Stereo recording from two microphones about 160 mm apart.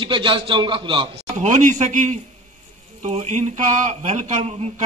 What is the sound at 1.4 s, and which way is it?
Speech, 50° right (ahead or behind).